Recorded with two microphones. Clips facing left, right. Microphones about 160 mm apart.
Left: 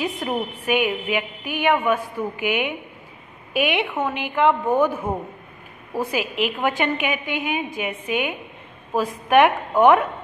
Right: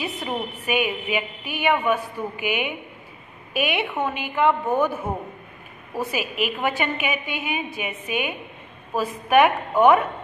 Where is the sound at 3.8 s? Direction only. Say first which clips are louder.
Left 1 dB; 10° right (ahead or behind).